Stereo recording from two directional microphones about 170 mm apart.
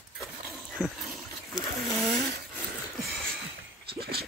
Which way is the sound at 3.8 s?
65° right (ahead or behind).